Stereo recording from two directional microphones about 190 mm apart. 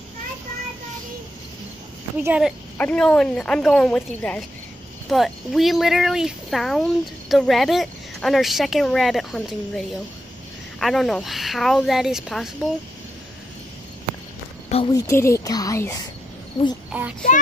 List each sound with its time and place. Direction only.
2.1 s speech: 5° right (ahead or behind)
2.8 s speech: 5° left (ahead or behind)
14.9 s speech: 15° left (ahead or behind)
16.9 s speech: 5° right (ahead or behind)